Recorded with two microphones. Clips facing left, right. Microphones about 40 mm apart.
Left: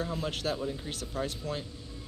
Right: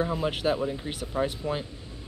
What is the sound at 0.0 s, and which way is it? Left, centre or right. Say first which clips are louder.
Speech: right 6 dB; centre.